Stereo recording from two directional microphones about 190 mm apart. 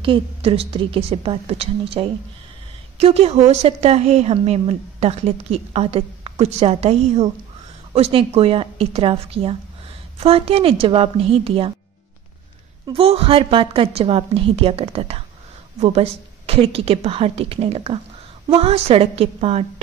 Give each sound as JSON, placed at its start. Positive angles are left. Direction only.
{"t": 0.0, "sound": "a woman's voice", "side_deg": -30}
{"t": 12.8, "sound": "a woman's voice", "side_deg": -30}